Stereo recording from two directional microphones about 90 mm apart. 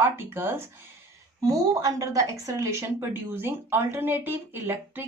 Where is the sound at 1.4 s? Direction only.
40° right (ahead or behind).